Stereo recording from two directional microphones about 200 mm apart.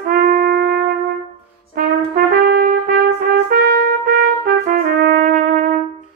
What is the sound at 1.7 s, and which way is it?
Brass instrument, 50° right (ahead or behind).